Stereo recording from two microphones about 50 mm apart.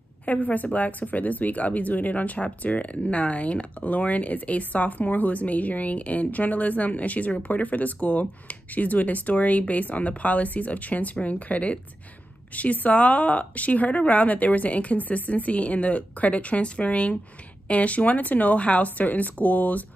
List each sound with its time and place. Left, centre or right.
0.2 s a woman's voice: left